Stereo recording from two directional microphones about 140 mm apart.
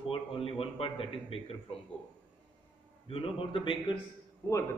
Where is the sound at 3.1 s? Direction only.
40° left (ahead or behind).